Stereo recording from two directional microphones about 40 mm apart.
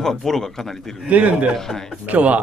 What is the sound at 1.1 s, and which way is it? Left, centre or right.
Speech, right.